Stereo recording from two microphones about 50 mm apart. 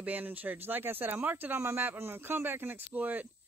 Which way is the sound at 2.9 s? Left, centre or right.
Right.